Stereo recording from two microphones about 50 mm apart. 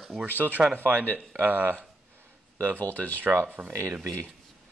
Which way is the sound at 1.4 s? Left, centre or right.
Right.